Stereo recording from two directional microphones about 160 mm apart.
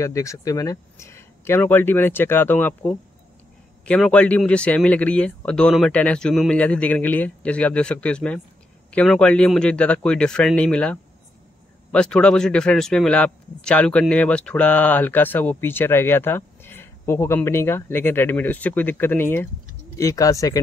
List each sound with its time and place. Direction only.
0.0 s a man's voice: 20° left (ahead or behind)